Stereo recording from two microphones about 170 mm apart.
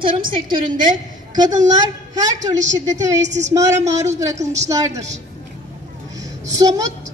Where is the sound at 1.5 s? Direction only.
45° right (ahead or behind).